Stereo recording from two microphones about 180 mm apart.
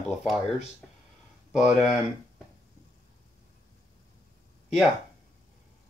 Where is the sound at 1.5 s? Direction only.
5° right (ahead or behind).